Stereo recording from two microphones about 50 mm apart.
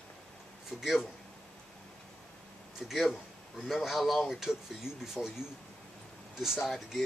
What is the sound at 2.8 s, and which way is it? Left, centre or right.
Speech, centre.